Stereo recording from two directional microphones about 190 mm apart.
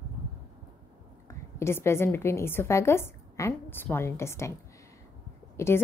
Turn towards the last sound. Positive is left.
turn(degrees=15)  # may be behind; listen again after turning